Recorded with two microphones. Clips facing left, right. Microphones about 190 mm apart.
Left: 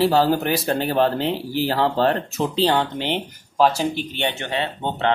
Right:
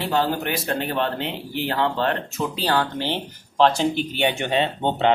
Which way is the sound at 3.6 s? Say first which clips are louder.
Even; 5° left (ahead or behind).